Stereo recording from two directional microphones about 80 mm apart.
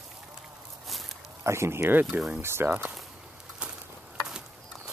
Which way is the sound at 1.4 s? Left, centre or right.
Right.